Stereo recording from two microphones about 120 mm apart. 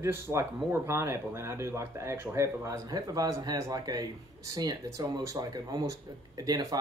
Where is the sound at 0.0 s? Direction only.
20° right (ahead or behind).